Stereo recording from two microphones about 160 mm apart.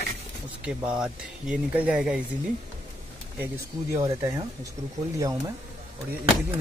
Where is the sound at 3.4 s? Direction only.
15° right (ahead or behind).